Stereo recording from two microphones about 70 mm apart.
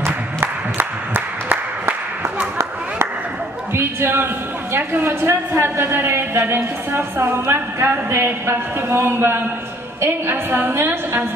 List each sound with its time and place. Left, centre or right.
0.0 s music: right
3.7 s a sound: right
4.7 s a man's voice: right